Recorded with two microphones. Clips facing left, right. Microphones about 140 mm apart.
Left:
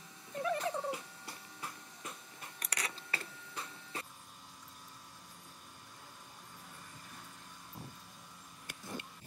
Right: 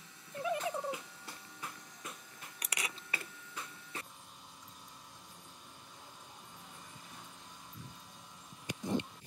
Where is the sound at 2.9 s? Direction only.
35° left (ahead or behind).